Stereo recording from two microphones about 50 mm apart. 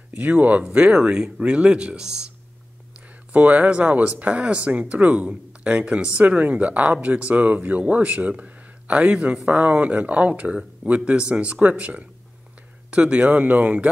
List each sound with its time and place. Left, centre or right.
0.1 s speech: right
3.3 s speech: right